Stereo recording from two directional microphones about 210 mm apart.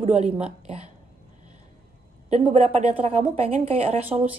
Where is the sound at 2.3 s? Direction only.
30° right (ahead or behind).